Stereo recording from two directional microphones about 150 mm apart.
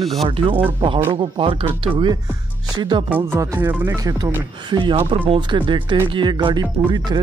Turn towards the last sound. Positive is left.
turn(degrees=-30)  # may be behind; listen again after turning